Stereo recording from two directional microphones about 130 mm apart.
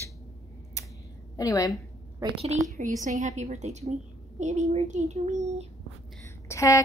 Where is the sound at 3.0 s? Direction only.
60° right (ahead or behind).